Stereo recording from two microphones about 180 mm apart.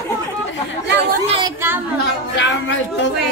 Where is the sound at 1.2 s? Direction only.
30° right (ahead or behind).